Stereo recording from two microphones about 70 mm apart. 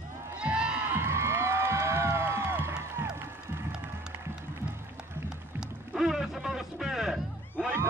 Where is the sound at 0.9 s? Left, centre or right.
Right.